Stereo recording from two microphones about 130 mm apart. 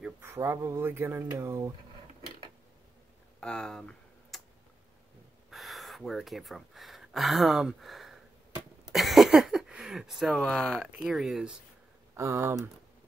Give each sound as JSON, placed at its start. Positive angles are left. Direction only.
{"t": 0.2, "sound": "speech", "side_deg": -20}
{"t": 3.3, "sound": "typing", "side_deg": 5}
{"t": 5.5, "sound": "gasp", "side_deg": 0}
{"t": 10.9, "sound": "speech", "side_deg": -5}
{"t": 12.2, "sound": "speech", "side_deg": -20}